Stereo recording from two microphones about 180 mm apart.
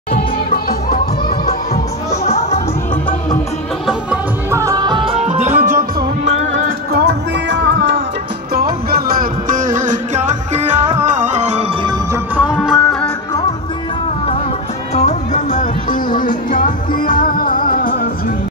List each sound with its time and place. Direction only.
0.5 s music: 55° left (ahead or behind)
3.8 s music: 10° right (ahead or behind); by 6.0 s 45° right (ahead or behind)
6.2 s music: 70° right (ahead or behind); by 8.0 s 85° right
8.5 s music: 55° right (ahead or behind); by 11.6 s 40° right (ahead or behind)
12.4 s music: 5° right (ahead or behind)
15.0 s music: 40° left (ahead or behind)